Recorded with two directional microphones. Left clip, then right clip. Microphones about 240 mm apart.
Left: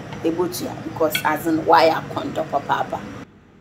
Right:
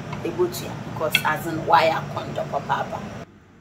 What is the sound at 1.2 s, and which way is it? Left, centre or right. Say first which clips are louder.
Speech: left 5 dB; left.